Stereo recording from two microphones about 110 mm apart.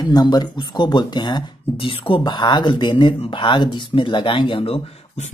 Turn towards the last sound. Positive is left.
turn(degrees=60)  # may be behind; listen again after turning